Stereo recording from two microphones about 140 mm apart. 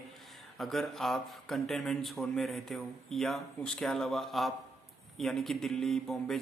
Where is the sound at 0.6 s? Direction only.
Centre (ahead or behind).